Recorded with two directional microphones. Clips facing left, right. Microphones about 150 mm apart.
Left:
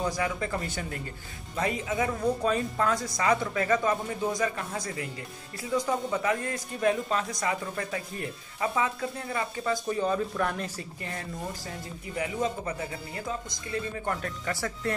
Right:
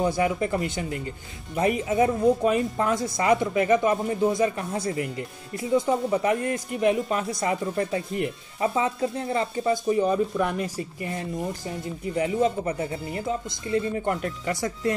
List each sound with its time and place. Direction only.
0.0 s speech: 25° right (ahead or behind)
12.2 s speech: 30° right (ahead or behind)